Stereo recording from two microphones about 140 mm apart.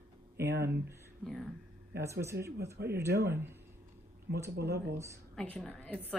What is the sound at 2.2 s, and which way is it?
Speech, 20° right (ahead or behind).